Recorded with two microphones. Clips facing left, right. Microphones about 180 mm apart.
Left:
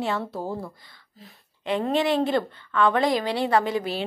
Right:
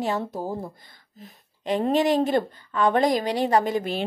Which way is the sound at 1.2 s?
40° right (ahead or behind).